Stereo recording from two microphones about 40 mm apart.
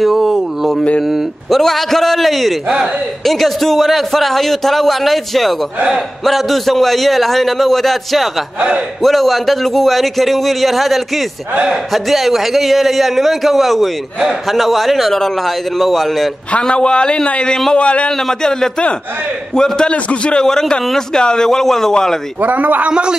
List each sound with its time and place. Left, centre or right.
0.0 s a sound: centre
1.5 s a man's voice: centre
16.6 s speech: left
18.1 s a man's voice: centre
19.9 s a man's voice: left
20.3 s a man's voice: centre
21.5 s a man's voice: centre
22.4 s a man's voice: right
22.8 s a man's voice: right